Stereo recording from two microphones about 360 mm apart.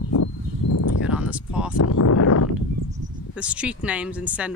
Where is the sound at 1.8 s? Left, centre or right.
Left.